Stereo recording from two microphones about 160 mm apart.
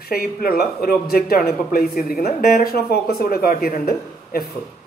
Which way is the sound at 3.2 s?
70° left (ahead or behind).